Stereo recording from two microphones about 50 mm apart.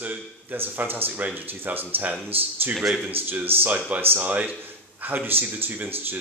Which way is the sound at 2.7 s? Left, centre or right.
Centre.